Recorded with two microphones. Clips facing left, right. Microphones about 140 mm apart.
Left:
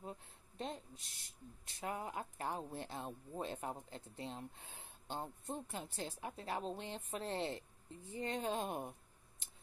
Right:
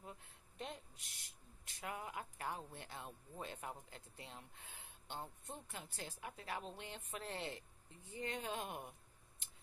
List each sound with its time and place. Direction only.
0.0 s speech: 30° left (ahead or behind)